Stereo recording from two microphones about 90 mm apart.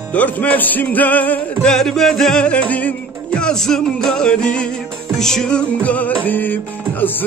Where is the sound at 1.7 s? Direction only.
5° left (ahead or behind).